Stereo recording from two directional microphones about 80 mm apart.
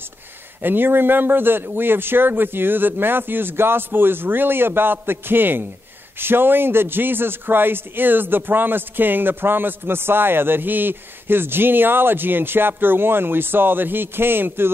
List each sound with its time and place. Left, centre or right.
0.6 s a man's voice: right